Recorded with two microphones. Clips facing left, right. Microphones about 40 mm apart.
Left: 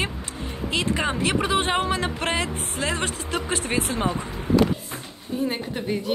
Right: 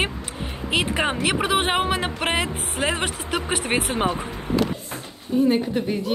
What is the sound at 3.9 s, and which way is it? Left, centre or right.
Speech, right.